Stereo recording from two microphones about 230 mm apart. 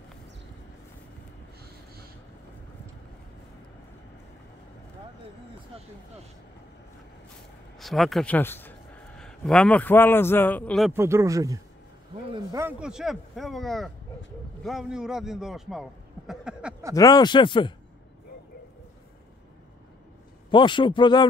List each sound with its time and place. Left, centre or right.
7.8 s a man's voice: centre
10.9 s a man's voice: centre
16.9 s speech: centre
20.5 s speech: left